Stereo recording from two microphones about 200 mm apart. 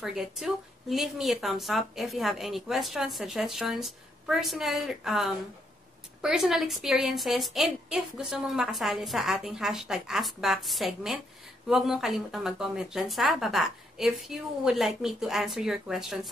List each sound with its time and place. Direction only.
0.0 s speech: centre (ahead or behind)